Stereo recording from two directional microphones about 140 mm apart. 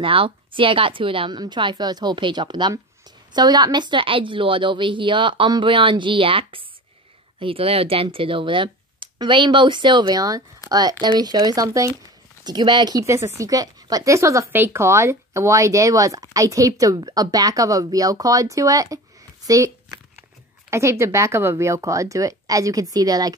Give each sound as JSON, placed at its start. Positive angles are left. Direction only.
{"t": 0.0, "sound": "a woman's voice", "side_deg": -40}
{"t": 19.4, "sound": "a sound", "side_deg": -20}
{"t": 20.7, "sound": "speech", "side_deg": -20}